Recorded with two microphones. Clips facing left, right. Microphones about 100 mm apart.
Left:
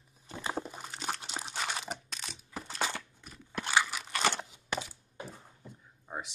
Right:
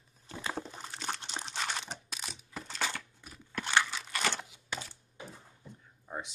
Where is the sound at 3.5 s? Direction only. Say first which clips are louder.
Even; 10° left (ahead or behind).